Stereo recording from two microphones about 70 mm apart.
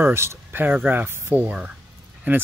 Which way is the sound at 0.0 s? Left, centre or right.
Right.